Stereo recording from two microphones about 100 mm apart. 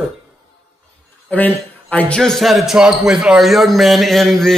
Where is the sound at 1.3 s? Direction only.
15° left (ahead or behind).